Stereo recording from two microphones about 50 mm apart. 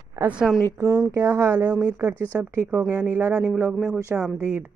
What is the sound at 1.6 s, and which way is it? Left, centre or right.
Speech, right.